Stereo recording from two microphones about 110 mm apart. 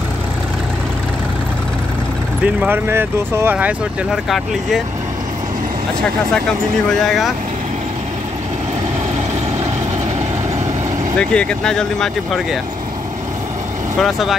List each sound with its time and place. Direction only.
2.4 s speech: 10° right (ahead or behind)
4.1 s speech: centre (ahead or behind)
11.1 s speech: 10° left (ahead or behind)